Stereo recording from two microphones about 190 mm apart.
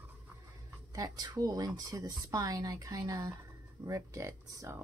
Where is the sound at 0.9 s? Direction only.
20° right (ahead or behind).